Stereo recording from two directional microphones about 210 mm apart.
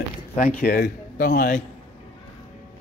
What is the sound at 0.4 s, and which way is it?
Speech, 45° left (ahead or behind).